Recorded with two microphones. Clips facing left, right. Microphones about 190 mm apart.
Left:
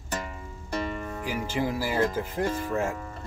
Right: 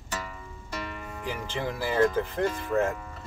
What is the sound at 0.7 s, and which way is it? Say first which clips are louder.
Music: left 6 dB; 45° left (ahead or behind).